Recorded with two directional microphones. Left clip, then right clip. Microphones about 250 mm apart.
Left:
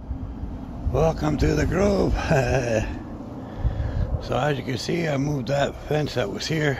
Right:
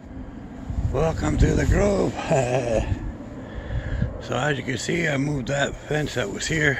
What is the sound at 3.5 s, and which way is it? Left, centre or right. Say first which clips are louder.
Speech: even; centre.